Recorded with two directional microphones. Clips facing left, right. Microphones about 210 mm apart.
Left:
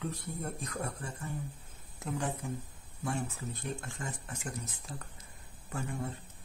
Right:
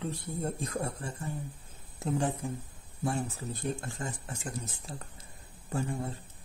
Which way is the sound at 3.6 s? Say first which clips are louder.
Right 6 dB; 35° right (ahead or behind).